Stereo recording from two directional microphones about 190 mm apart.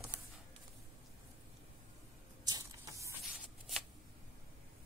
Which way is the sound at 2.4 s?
20° right (ahead or behind).